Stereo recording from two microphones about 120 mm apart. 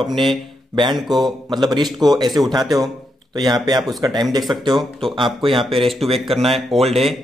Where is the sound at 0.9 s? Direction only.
Centre (ahead or behind).